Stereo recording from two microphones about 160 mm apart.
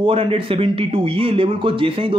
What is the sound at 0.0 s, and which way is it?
Speech, 35° right (ahead or behind).